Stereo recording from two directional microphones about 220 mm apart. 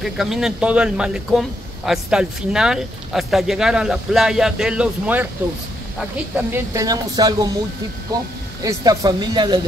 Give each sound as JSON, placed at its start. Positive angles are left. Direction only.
{"t": 0.0, "sound": "speech", "side_deg": 0}
{"t": 8.6, "sound": "speech", "side_deg": -15}